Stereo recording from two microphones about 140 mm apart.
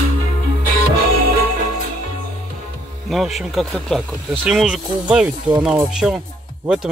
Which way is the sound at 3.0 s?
Centre (ahead or behind).